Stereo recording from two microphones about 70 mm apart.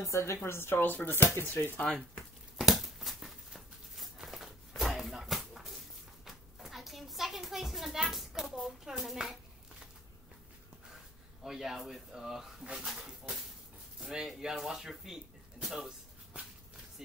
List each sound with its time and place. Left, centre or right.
0.0 s speech: left
2.5 s a sound: centre
11.4 s speech: centre